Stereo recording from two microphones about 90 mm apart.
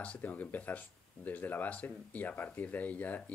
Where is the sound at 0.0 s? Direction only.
15° left (ahead or behind).